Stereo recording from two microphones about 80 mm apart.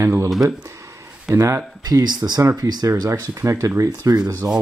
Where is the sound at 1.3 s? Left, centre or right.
Right.